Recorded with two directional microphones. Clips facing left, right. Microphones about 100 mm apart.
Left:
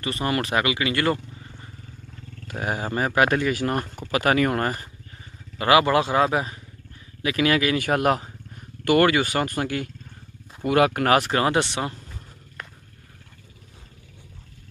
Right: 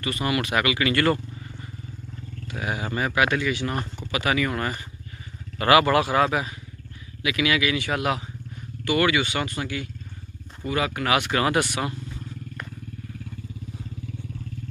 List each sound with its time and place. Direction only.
0.0 s speech: 35° left (ahead or behind)
2.6 s speech: 40° left (ahead or behind)
5.6 s speech: 20° left (ahead or behind)
7.2 s speech: 40° left (ahead or behind)
10.6 s speech: 60° left (ahead or behind)
11.1 s speech: 35° left (ahead or behind)